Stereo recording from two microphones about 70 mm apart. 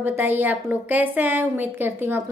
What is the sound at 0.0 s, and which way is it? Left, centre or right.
A woman's voice, right.